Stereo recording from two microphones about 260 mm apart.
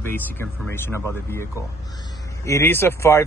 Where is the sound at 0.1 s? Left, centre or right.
Centre.